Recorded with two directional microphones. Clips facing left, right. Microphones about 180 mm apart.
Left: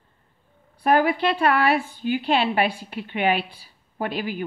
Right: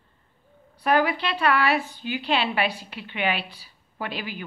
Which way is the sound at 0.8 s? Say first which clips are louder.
Left 3 dB; 50° left (ahead or behind).